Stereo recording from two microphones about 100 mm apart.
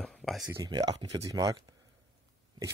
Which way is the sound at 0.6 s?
40° right (ahead or behind).